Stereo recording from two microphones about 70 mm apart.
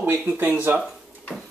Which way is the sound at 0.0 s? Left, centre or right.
Right.